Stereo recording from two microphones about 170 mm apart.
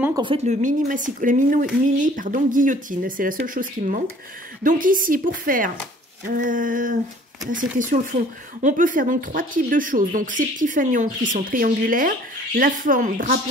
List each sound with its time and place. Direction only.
0.1 s speech: 30° right (ahead or behind); by 13.4 s 50° right (ahead or behind)